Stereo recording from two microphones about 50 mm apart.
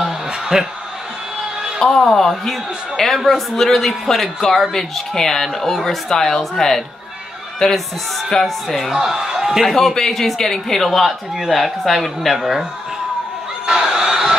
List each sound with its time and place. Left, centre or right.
0.0 s a sound: centre
1.8 s a man's voice: centre
8.9 s speech: centre
9.8 s a man's voice: centre
13.7 s crowd: centre